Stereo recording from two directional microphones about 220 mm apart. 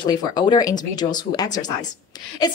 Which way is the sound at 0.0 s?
20° left (ahead or behind).